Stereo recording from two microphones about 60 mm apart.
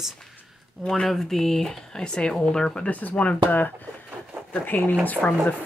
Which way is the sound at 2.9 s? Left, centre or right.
Left.